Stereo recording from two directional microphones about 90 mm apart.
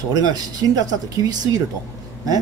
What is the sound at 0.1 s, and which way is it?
A man's voice, 45° right (ahead or behind).